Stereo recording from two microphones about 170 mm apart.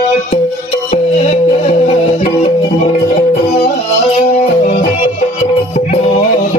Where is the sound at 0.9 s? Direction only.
40° left (ahead or behind).